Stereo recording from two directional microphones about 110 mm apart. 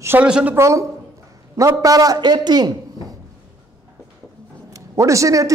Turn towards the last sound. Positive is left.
turn(degrees=-30)  # may be behind; listen again after turning